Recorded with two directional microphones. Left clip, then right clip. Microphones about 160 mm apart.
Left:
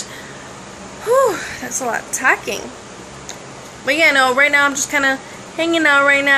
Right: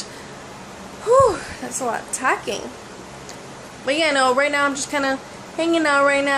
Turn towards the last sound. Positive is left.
turn(degrees=-5)  # may be behind; listen again after turning